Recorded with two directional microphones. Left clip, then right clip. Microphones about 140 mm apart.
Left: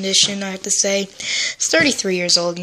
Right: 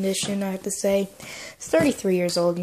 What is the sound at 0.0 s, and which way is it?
Speech, 15° right (ahead or behind).